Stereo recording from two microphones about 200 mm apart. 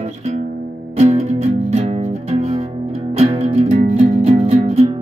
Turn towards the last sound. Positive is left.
turn(degrees=-30)  # may be behind; listen again after turning